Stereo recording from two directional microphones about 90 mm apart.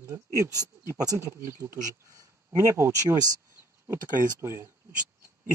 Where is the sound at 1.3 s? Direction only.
30° right (ahead or behind).